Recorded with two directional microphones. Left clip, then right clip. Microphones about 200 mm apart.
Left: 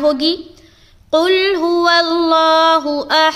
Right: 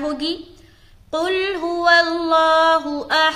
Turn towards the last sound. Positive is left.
turn(degrees=40)  # may be behind; listen again after turning